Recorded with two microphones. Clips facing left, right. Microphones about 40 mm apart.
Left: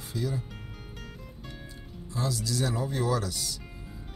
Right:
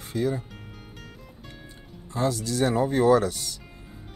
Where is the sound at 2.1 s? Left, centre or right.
Right.